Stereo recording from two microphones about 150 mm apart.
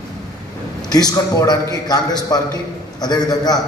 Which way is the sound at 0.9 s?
25° left (ahead or behind).